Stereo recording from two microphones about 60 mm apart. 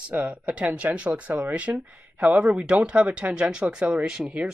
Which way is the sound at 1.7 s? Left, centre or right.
Right.